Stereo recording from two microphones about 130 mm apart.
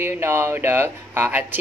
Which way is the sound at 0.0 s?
20° right (ahead or behind).